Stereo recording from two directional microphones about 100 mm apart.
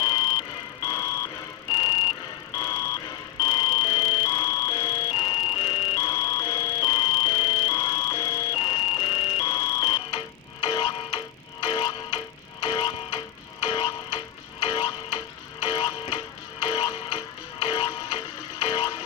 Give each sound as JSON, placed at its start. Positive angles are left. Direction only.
{"t": 0.0, "sound": "music", "side_deg": 40}
{"t": 2.6, "sound": "music", "side_deg": 35}
{"t": 3.4, "sound": "music", "side_deg": 45}
{"t": 5.2, "sound": "music", "side_deg": 65}
{"t": 5.9, "sound": "music", "side_deg": 35}
{"t": 8.5, "sound": "music", "side_deg": 70}
{"t": 9.4, "sound": "music", "side_deg": 35}